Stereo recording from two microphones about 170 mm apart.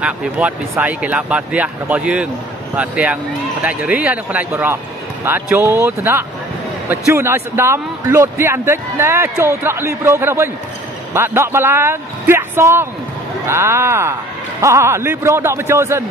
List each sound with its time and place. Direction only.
0.0 s speech: 10° right (ahead or behind)